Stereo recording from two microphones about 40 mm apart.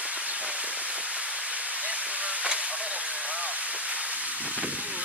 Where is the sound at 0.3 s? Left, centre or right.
Right.